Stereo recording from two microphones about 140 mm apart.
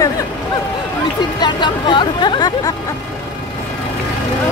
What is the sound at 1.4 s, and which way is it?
Speech, 35° left (ahead or behind).